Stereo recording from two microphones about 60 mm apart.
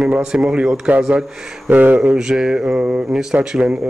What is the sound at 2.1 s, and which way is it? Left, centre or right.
Speech, centre.